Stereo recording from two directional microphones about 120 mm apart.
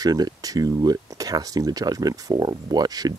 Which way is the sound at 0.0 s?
30° right (ahead or behind).